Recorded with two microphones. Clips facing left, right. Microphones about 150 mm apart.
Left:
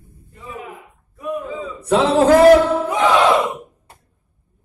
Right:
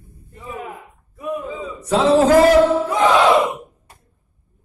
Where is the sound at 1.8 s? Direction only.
60° left (ahead or behind).